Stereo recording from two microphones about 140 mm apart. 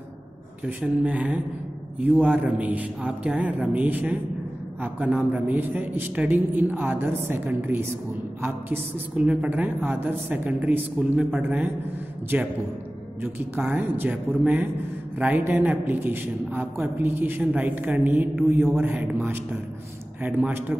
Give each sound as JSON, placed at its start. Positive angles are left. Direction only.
{"t": 0.7, "sound": "a woman's voice", "side_deg": -10}
{"t": 13.7, "sound": "a woman's voice", "side_deg": -15}